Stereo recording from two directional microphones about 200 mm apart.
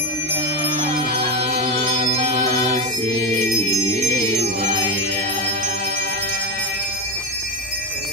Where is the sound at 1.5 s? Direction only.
35° right (ahead or behind).